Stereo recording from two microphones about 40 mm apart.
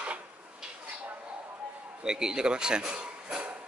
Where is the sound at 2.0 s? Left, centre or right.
Centre.